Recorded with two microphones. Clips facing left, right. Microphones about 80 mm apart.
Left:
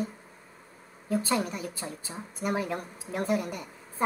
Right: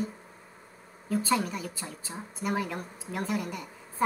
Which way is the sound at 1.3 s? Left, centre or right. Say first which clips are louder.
Right 1 dB; left.